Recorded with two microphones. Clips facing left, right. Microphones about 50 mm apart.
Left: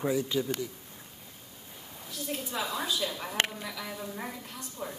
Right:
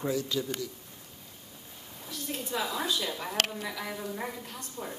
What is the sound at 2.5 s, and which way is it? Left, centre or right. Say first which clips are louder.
Speech: right 2 dB; centre.